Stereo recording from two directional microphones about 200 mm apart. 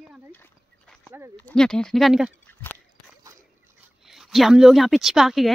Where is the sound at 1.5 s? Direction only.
5° left (ahead or behind).